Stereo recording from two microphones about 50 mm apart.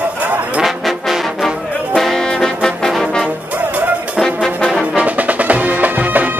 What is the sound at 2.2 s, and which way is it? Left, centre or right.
Trombone, centre.